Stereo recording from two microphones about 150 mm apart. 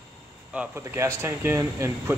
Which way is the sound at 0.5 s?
10° right (ahead or behind).